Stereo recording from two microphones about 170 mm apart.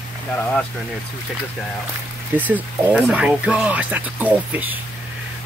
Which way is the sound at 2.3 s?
10° right (ahead or behind).